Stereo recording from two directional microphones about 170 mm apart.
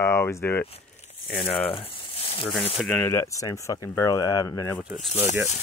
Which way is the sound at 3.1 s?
20° left (ahead or behind).